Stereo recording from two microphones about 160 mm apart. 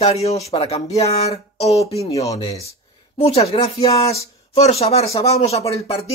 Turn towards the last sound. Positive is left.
turn(degrees=40)  # may be behind; listen again after turning